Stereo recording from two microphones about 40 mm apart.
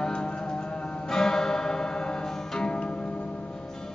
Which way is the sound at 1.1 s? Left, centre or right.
Centre.